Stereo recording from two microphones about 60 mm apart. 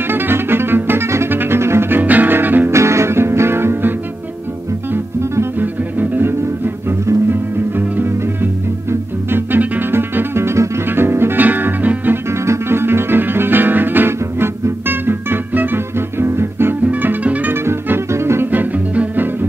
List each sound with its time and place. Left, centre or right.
0.1 s music: right
2.7 s music: right
4.9 s music: right
5.6 s music: right
8.0 s music: right
12.3 s music: right
16.8 s music: right
17.8 s music: right
18.5 s music: right